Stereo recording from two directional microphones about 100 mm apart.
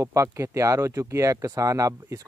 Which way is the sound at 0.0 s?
30° right (ahead or behind).